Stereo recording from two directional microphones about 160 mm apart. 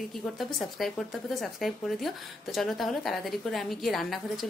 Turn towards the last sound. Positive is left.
turn(degrees=0)  # may be behind; listen again after turning